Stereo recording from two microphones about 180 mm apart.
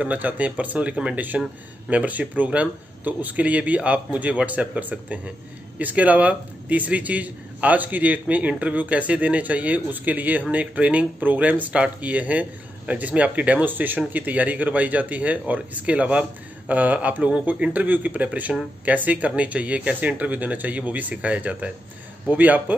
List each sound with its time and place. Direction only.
0.0 s a man's voice: 10° right (ahead or behind)